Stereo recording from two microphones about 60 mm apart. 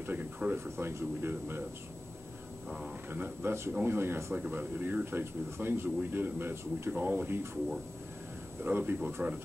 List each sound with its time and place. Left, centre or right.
0.0 s a sound: right
0.7 s speech: right
3.1 s speech: right
4.4 s speech: right
6.9 s speech: right
8.6 s speech: right